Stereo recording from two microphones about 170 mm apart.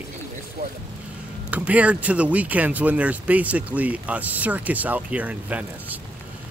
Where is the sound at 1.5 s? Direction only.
10° right (ahead or behind).